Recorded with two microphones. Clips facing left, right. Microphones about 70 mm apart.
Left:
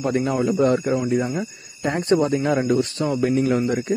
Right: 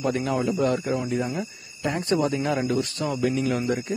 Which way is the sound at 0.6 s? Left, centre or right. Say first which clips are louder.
Left 5 dB; left.